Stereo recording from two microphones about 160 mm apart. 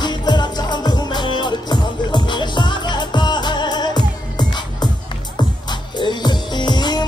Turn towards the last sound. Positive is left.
turn(degrees=25)  # may be behind; listen again after turning